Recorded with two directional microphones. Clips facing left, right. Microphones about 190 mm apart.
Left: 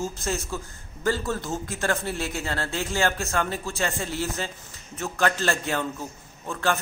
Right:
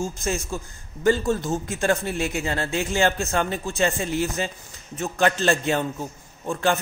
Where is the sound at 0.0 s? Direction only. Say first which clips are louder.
Right 2 dB; 15° right (ahead or behind).